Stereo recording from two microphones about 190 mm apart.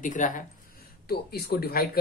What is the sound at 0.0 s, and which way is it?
Speech, 45° left (ahead or behind).